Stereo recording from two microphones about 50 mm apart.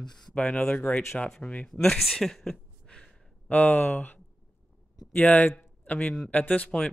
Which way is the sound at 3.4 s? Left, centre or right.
Left.